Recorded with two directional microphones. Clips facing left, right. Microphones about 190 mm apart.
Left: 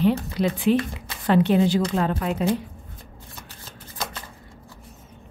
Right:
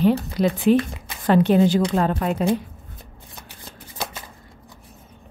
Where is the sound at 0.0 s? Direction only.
40° right (ahead or behind).